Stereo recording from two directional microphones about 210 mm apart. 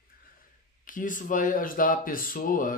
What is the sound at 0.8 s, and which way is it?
Speech, 40° left (ahead or behind).